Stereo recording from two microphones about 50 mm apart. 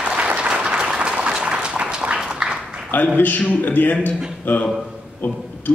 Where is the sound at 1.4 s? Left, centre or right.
Centre.